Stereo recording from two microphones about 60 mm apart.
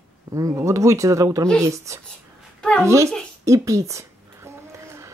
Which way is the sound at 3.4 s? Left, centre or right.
Right.